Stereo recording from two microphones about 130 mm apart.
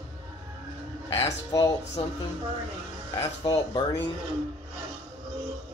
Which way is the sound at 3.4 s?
35° left (ahead or behind).